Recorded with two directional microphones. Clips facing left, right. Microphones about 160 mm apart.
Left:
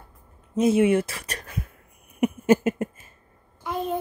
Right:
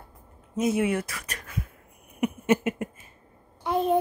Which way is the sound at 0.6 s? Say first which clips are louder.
Left 6 dB; 25° left (ahead or behind).